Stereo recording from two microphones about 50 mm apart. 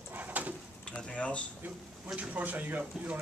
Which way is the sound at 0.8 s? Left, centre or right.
Left.